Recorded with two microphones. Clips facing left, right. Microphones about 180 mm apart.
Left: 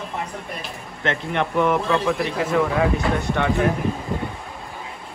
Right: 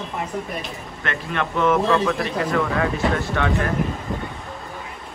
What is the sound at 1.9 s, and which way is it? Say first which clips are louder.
Speech: right 1 dB; centre (ahead or behind).